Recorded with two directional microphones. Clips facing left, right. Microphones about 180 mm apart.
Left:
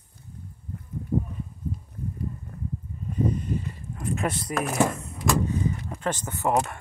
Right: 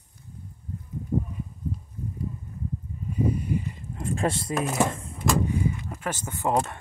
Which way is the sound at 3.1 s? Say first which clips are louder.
Right 1 dB; 10° right (ahead or behind).